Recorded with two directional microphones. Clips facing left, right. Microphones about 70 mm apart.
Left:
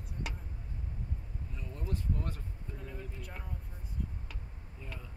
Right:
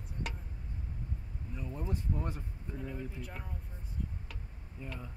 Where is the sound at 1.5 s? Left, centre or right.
Centre.